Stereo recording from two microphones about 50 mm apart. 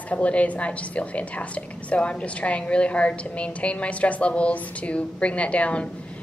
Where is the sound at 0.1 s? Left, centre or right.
Left.